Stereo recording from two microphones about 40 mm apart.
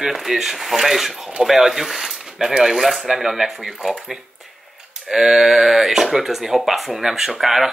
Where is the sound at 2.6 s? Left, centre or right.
Centre.